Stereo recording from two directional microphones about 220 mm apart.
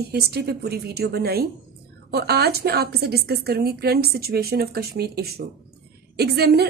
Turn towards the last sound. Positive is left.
turn(degrees=-45)  # may be behind; listen again after turning